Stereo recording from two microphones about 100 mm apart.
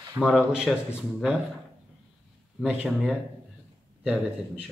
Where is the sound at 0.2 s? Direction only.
35° right (ahead or behind).